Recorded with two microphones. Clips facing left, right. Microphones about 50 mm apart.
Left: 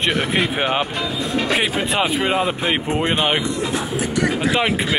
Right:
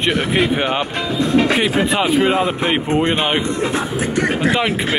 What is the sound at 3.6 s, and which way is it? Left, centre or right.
Speech, right.